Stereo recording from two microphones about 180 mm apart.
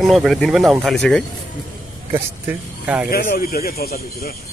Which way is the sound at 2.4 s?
10° right (ahead or behind).